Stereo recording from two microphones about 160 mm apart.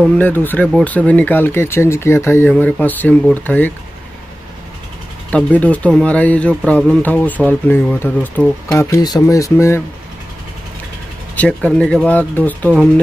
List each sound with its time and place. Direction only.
0.0 s speech: 10° left (ahead or behind)
5.3 s speech: 10° left (ahead or behind)
8.7 s speech: 20° left (ahead or behind)
11.3 s speech: 10° left (ahead or behind)